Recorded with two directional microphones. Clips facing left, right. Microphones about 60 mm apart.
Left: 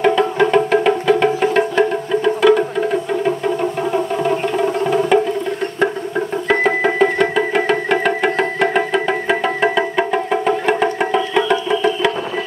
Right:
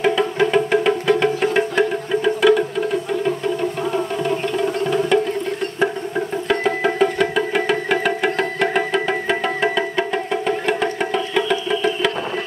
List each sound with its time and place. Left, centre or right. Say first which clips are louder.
0.0 s music: left 3 dB; centre
5.1 s music: left 3 dB; centre
6.5 s music: left 4 dB; left
7.0 s music: left 3 dB; centre